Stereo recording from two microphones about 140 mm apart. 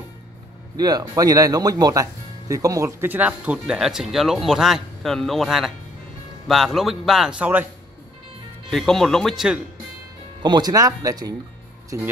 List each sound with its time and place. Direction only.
0.7 s a man's voice: 30° right (ahead or behind); by 7.6 s 10° right (ahead or behind)
8.6 s a man's voice: centre (ahead or behind)
10.4 s speech: 30° right (ahead or behind)